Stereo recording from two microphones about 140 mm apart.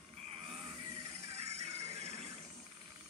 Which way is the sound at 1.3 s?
50° right (ahead or behind).